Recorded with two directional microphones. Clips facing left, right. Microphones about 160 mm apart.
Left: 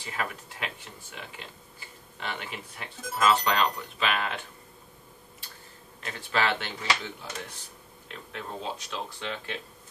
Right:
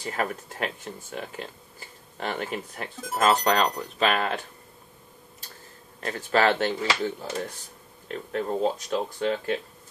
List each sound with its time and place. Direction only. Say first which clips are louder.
0.0 s speech: right 6 dB; 45° right (ahead or behind)
6.0 s speech: right 6 dB; 45° right (ahead or behind)